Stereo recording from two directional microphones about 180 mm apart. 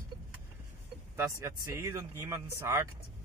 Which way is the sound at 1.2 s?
15° right (ahead or behind).